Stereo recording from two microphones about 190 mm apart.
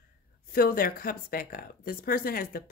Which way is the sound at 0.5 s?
50° left (ahead or behind).